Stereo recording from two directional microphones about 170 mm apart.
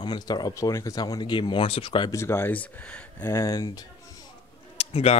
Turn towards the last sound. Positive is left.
turn(degrees=35)  # may be behind; listen again after turning